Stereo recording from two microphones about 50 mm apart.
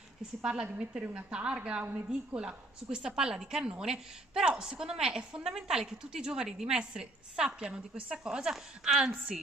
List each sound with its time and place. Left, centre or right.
0.4 s a woman's voice: centre
9.3 s speech: centre